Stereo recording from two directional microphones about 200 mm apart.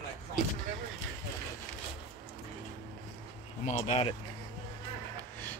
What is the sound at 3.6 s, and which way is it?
Speech, 30° left (ahead or behind).